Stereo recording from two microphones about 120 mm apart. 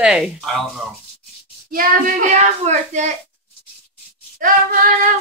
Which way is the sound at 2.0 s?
80° right.